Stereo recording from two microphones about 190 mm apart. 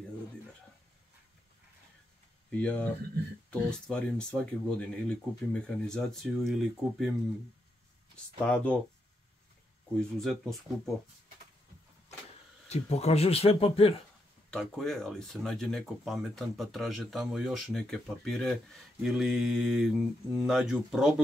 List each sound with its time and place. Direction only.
2.5 s speech: 10° left (ahead or behind)
8.5 s speech: 5° left (ahead or behind)
9.9 s speech: centre (ahead or behind)
12.6 s speech: 35° left (ahead or behind)
14.5 s speech: centre (ahead or behind)